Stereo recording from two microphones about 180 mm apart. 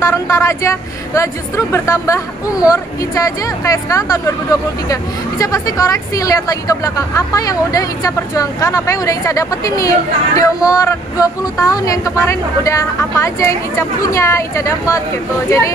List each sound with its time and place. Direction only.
0.0 s a woman's voice: 15° left (ahead or behind)
5.4 s a woman's voice: 20° left (ahead or behind)